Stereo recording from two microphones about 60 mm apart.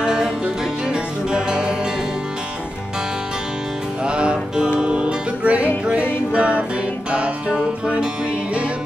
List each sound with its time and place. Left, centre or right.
0.0 s music: centre
4.0 s music: centre